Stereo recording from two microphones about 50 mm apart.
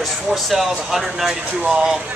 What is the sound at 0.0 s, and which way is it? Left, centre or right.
Speech, centre.